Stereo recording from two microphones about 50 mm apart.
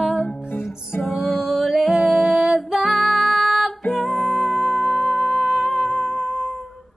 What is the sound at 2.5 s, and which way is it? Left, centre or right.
Music, centre.